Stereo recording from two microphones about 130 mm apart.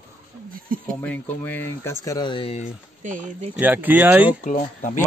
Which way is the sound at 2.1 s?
40° left (ahead or behind).